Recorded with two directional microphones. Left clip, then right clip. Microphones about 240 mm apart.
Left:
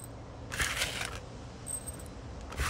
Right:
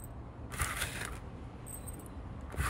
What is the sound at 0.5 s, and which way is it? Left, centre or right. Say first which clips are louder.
Crushing: left 5 dB; centre.